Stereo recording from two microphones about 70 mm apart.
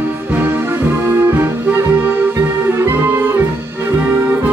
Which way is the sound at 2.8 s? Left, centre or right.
Right.